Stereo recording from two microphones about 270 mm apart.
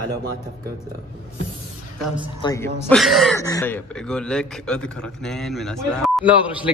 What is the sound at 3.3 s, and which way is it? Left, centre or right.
A man's voice, centre.